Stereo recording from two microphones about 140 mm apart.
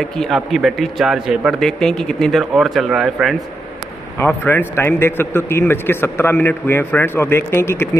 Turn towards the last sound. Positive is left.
turn(degrees=20)  # may be behind; listen again after turning